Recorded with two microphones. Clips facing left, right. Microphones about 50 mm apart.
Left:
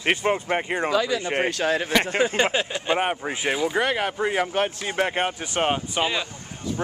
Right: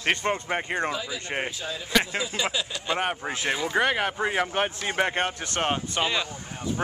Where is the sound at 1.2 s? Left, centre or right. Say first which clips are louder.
Left 6 dB; left.